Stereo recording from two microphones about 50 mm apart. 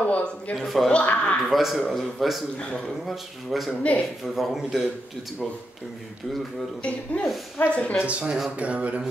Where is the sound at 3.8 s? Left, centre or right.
Left.